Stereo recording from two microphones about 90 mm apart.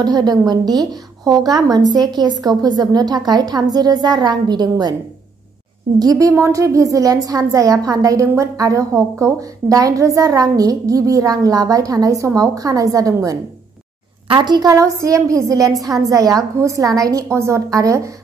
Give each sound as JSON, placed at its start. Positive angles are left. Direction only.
{"t": 0.0, "sound": "a woman's voice", "side_deg": -45}
{"t": 5.9, "sound": "a woman's voice", "side_deg": -40}
{"t": 14.2, "sound": "a woman's voice", "side_deg": -60}
{"t": 14.7, "sound": "a woman's voice", "side_deg": -35}